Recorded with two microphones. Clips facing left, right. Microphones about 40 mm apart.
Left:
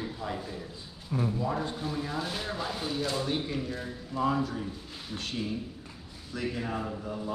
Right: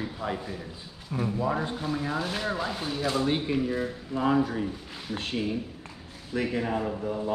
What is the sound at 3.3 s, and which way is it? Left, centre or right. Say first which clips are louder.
Speech: right 5 dB; right.